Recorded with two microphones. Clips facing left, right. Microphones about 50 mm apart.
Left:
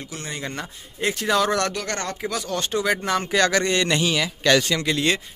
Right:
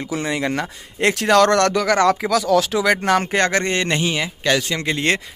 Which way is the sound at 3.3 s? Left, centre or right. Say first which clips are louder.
Right 1 dB; right.